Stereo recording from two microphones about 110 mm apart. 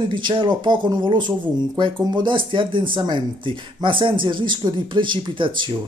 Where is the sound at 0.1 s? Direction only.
45° right (ahead or behind).